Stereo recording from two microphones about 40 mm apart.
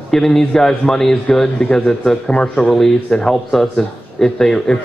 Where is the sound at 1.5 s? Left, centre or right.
Left.